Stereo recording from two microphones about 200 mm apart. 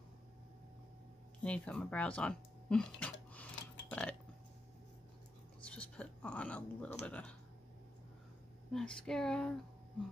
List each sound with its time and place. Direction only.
1.4 s speech: 5° left (ahead or behind)
3.9 s burping: 5° left (ahead or behind)
5.6 s dog: 5° left (ahead or behind)
7.1 s speech: 5° left (ahead or behind)
8.7 s speech: 5° left (ahead or behind)